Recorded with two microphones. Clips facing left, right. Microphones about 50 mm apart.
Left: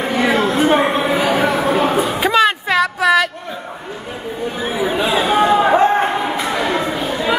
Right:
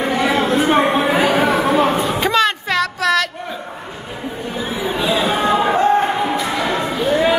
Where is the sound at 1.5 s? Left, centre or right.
Centre.